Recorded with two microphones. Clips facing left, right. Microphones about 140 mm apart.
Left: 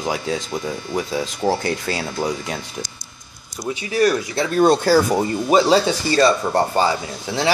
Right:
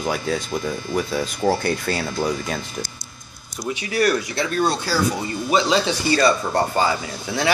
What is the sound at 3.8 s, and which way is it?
Speech, 30° left (ahead or behind).